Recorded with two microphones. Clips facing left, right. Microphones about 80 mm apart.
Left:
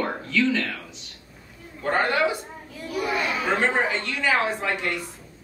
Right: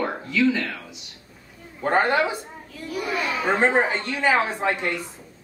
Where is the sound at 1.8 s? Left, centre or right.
Right.